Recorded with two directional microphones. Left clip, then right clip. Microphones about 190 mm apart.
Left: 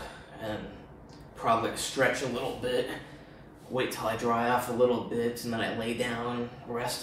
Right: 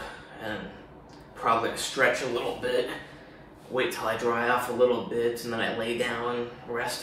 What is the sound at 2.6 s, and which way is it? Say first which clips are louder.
Speech: right 3 dB; 10° right (ahead or behind).